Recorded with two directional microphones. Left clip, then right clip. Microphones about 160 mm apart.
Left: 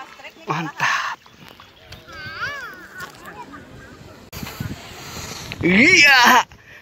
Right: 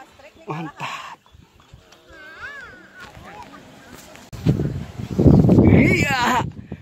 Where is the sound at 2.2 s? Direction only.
55° right (ahead or behind).